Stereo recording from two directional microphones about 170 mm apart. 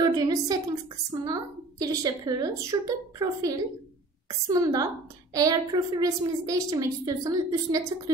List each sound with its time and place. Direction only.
0.0 s a woman's voice: 25° right (ahead or behind)